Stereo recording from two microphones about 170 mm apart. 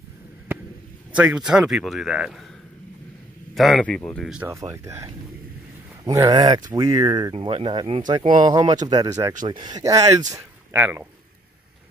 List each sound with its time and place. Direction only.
1.1 s speech: 5° right (ahead or behind)
3.5 s speech: centre (ahead or behind)
4.3 s speech: 10° right (ahead or behind)